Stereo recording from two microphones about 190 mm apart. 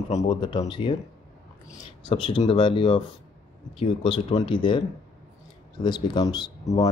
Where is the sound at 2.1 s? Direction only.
25° left (ahead or behind).